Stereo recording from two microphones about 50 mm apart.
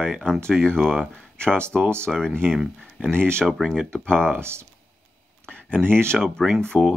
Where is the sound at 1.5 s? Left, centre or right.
Right.